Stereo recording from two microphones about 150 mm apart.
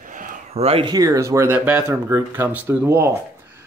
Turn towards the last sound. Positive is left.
turn(degrees=-20)  # may be behind; listen again after turning